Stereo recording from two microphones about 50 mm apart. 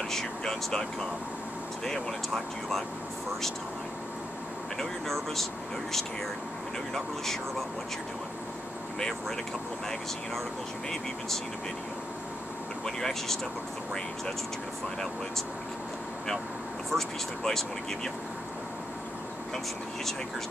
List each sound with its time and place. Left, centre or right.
0.1 s speech: centre
1.9 s speech: centre
4.7 s speech: centre
10.9 s speech: centre
12.8 s speech: centre
16.9 s speech: centre